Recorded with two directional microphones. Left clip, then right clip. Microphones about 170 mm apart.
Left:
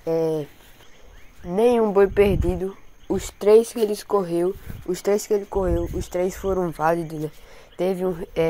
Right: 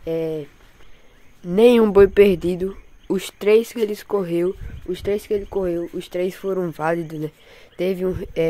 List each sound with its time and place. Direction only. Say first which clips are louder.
0.0 s speech: left 2 dB; 10° right (ahead or behind)
1.5 s speech: right 5 dB; 45° right (ahead or behind)
3.1 s speech: even; 25° right (ahead or behind)